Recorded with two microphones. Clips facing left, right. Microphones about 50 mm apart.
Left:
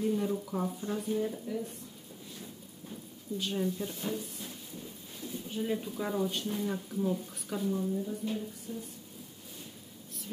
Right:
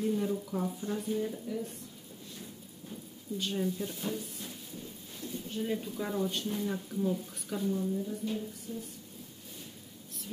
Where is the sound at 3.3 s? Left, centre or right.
Centre.